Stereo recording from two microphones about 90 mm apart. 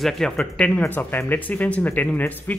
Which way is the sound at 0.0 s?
5° left (ahead or behind).